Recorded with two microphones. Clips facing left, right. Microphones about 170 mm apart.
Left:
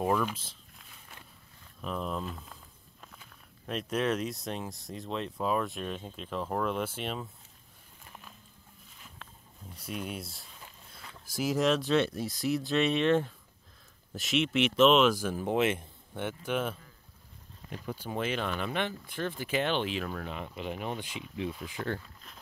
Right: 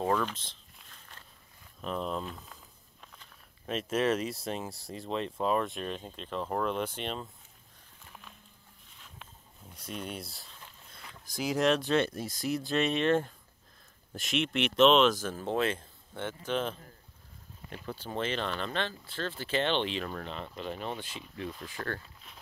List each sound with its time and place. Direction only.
0.0 s a sound: 10° left (ahead or behind)
1.8 s speech: centre (ahead or behind)
9.8 s speech: 5° left (ahead or behind)
17.8 s speech: 10° left (ahead or behind)